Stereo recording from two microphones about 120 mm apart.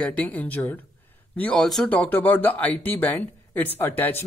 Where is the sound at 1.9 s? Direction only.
15° left (ahead or behind).